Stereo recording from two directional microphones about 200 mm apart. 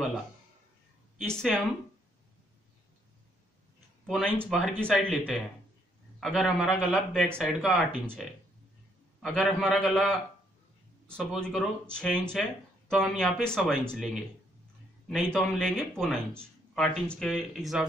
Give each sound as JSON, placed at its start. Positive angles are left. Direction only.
{"t": 1.2, "sound": "speech", "side_deg": 5}
{"t": 4.0, "sound": "a sound", "side_deg": 5}
{"t": 4.5, "sound": "speech", "side_deg": 5}
{"t": 9.2, "sound": "speech", "side_deg": 0}
{"t": 11.1, "sound": "speech", "side_deg": 5}
{"t": 15.3, "sound": "speech", "side_deg": 0}